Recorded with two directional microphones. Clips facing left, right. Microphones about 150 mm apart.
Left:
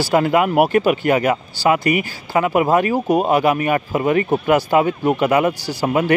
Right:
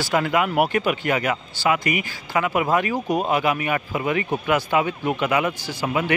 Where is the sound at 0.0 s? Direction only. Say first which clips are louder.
Left 5 dB; 40° left (ahead or behind).